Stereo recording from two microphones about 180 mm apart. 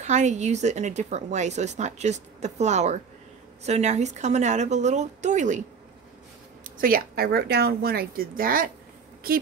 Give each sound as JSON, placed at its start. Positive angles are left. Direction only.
{"t": 0.0, "sound": "speech", "side_deg": -40}
{"t": 6.6, "sound": "speech", "side_deg": -50}